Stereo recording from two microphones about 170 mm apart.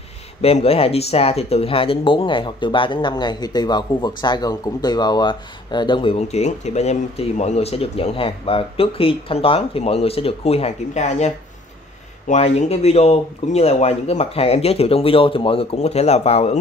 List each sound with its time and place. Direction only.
0.4 s speech: 35° left (ahead or behind)